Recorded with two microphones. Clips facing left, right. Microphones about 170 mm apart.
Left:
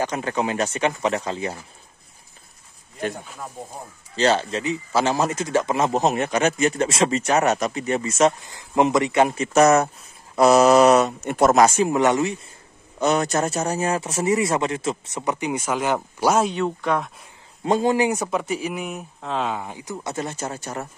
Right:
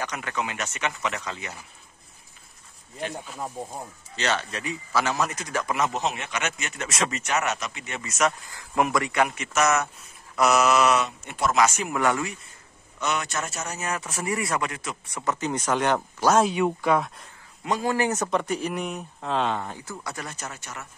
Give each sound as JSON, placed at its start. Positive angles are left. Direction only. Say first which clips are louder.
{"t": 0.0, "sound": "speech", "louder": "left 7 dB", "side_deg": 30}
{"t": 4.2, "sound": "speech", "louder": "left 8 dB", "side_deg": 30}
{"t": 13.0, "sound": "speech", "louder": "left 8 dB", "side_deg": 35}
{"t": 16.5, "sound": "speech", "louder": "even", "side_deg": -10}
{"t": 17.6, "sound": "speech", "louder": "left 5 dB", "side_deg": 25}